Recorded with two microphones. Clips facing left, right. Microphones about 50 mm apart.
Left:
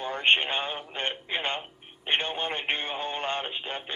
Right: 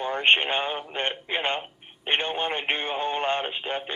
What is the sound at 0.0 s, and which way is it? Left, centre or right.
Speech, centre.